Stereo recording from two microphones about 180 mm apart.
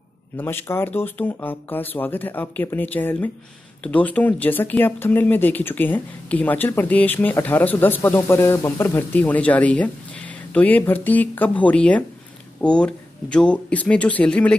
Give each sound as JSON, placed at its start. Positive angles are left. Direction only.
{"t": 0.4, "sound": "speech", "side_deg": 10}